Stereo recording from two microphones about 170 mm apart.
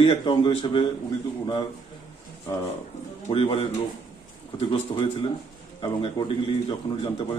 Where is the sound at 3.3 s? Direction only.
35° left (ahead or behind).